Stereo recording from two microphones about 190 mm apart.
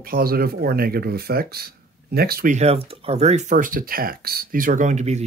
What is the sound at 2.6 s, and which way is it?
Speech, 35° right (ahead or behind).